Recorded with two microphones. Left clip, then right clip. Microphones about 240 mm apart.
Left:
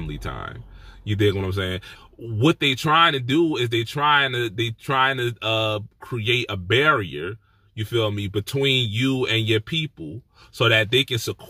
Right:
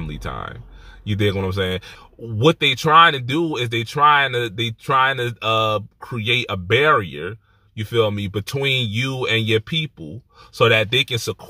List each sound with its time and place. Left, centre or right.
0.0 s speech: centre